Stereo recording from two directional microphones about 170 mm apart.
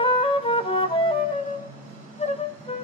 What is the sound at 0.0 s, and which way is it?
Music, 30° left (ahead or behind).